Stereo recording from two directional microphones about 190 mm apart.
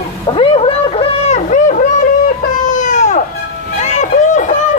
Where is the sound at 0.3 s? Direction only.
30° left (ahead or behind).